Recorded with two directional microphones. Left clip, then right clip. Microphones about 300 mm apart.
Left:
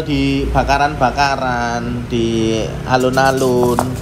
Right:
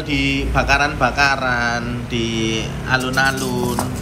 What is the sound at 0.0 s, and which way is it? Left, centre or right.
Speech, centre.